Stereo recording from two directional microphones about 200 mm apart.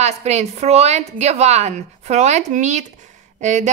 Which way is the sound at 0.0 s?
35° right (ahead or behind).